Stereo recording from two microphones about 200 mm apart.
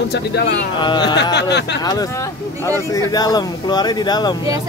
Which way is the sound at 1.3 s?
55° left (ahead or behind).